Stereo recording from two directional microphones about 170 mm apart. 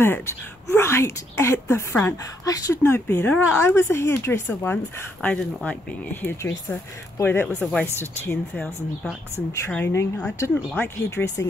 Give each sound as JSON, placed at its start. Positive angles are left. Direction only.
{"t": 0.7, "sound": "a woman's voice", "side_deg": 15}